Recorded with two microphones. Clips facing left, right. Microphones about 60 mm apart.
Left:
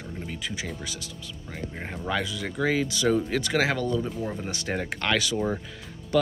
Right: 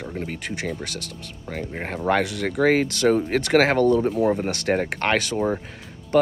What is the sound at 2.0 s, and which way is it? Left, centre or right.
Speech, right.